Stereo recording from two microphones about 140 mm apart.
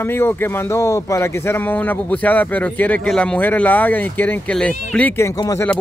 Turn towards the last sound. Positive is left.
turn(degrees=25)  # may be behind; listen again after turning